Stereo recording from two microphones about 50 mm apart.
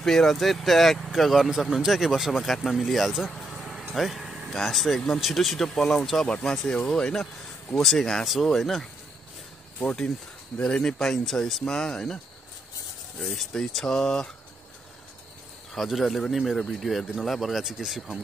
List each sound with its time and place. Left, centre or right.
0.0 s speech: centre
3.9 s vehicle: centre
4.6 s speech: centre
7.7 s speech: centre
9.8 s speech: centre
13.5 s speech: centre
15.7 s speech: centre